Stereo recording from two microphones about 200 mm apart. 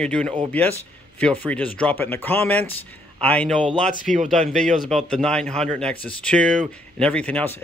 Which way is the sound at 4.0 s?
40° right (ahead or behind).